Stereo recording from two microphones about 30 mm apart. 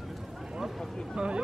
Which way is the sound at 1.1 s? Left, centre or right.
Right.